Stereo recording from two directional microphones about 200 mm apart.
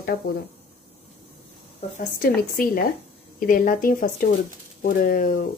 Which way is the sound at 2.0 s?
45° left (ahead or behind).